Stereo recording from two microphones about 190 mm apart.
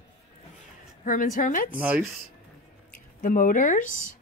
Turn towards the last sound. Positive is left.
turn(degrees=45)  # may be behind; listen again after turning